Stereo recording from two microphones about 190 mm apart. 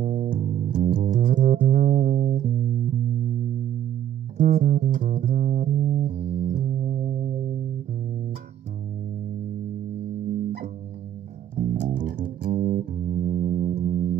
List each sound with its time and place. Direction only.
0.0 s bass guitar: 45° right (ahead or behind)
0.9 s music: 45° right (ahead or behind)
4.4 s music: 50° right (ahead or behind)
11.5 s music: 40° right (ahead or behind)